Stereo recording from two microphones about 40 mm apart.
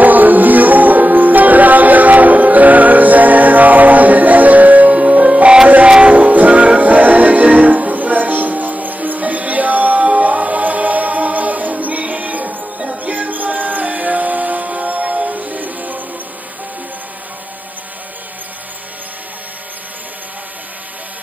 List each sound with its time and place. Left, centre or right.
0.0 s music: right
6.1 s music: right